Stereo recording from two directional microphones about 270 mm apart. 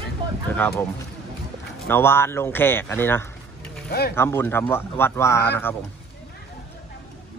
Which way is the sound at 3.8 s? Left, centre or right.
Left.